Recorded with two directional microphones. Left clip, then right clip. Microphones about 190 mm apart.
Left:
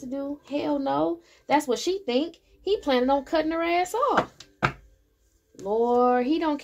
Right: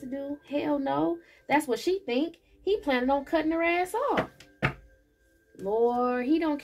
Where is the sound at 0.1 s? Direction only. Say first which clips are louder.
Left 2 dB; 40° left (ahead or behind).